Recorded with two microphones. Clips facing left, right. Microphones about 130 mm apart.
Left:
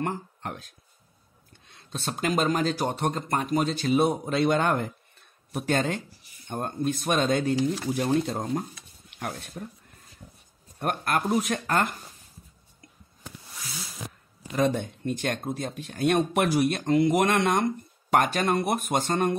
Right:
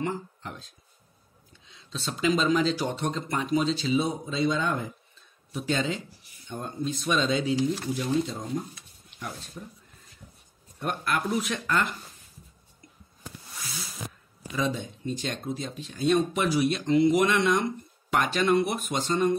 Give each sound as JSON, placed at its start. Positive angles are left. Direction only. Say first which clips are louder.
{"t": 0.0, "sound": "speech", "louder": "left 1 dB", "side_deg": 60}
{"t": 10.8, "sound": "speech", "louder": "left 2 dB", "side_deg": 50}
{"t": 14.5, "sound": "speech", "louder": "left 4 dB", "side_deg": 60}